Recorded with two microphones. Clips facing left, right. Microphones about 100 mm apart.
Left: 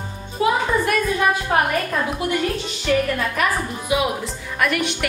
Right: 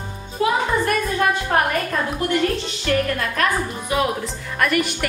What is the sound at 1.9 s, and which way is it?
Music, 5° left (ahead or behind).